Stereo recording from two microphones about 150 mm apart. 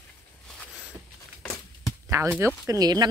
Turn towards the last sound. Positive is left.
turn(degrees=-25)  # may be behind; listen again after turning